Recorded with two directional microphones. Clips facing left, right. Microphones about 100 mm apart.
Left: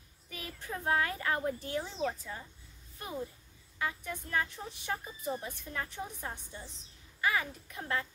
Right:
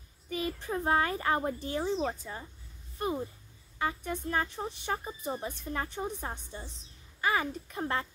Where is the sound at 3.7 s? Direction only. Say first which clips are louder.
Right 4 dB; 35° right (ahead or behind).